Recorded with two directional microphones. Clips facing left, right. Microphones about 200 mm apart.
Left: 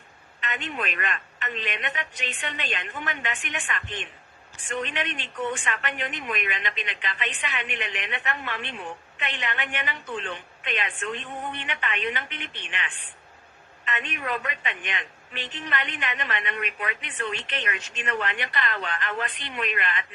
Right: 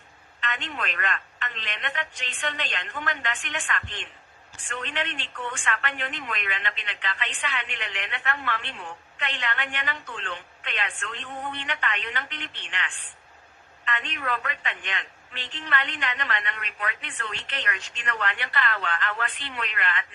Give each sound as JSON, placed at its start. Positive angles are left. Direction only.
{"t": 0.4, "sound": "a woman's voice", "side_deg": 20}